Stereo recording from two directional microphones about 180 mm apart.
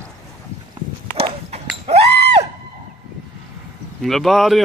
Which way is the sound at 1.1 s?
35° right (ahead or behind).